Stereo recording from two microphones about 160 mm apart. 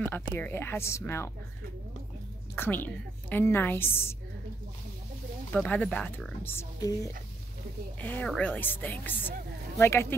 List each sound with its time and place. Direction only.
0.0 s a woman's voice: 10° left (ahead or behind)
2.5 s a woman's voice: 15° left (ahead or behind)
5.5 s a woman's voice: 10° left (ahead or behind)
8.0 s a woman's voice: 10° left (ahead or behind)